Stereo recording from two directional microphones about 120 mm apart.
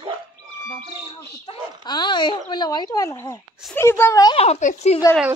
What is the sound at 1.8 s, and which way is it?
Speech, 40° left (ahead or behind).